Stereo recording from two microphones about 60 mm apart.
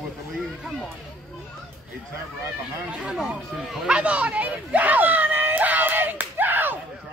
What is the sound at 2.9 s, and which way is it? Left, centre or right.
Speech, centre.